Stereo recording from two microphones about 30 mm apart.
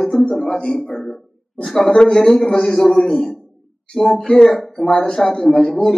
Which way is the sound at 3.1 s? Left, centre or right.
Left.